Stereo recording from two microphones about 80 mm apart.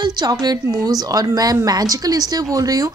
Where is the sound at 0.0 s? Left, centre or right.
Right.